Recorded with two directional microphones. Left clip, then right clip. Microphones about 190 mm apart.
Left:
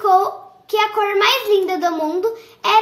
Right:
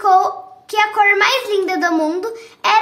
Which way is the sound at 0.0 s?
30° right (ahead or behind).